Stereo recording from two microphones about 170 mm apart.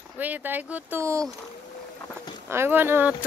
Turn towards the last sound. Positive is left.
turn(degrees=-10)  # may be behind; listen again after turning